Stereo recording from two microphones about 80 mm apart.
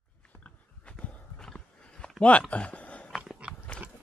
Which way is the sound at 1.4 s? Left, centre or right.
Centre.